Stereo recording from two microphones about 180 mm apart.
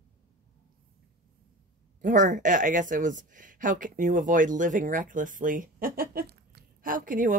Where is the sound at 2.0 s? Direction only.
45° right (ahead or behind).